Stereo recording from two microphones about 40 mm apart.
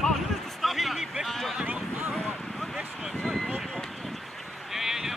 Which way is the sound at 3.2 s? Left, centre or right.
Centre.